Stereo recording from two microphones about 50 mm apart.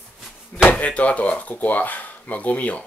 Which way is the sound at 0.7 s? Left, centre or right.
Left.